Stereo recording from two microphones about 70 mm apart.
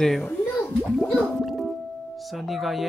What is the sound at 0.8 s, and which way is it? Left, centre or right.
Gargling, centre.